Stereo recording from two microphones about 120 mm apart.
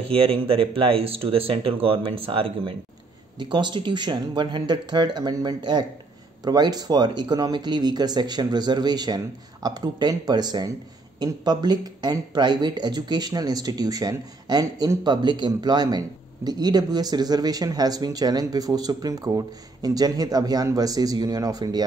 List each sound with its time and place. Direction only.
0.1 s speech: 50° right (ahead or behind); by 21.8 s 30° right (ahead or behind)